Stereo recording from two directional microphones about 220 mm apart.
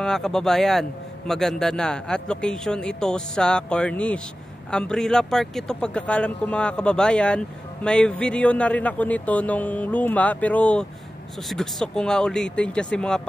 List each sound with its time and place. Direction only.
0.0 s speech: centre (ahead or behind)